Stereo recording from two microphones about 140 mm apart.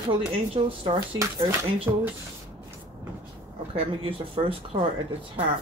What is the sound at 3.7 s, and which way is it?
Speech, 40° right (ahead or behind).